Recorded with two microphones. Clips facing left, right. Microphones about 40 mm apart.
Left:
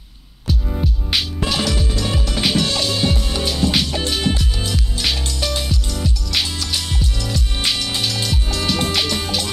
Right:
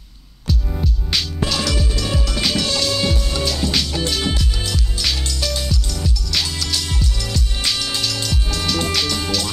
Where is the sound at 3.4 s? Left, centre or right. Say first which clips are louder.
Left 3 dB; centre.